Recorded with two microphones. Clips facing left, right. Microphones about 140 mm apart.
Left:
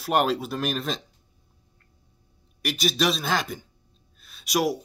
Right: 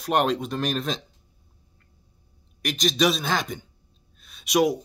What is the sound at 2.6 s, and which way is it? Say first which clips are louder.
Speech: right 2 dB; 5° left (ahead or behind).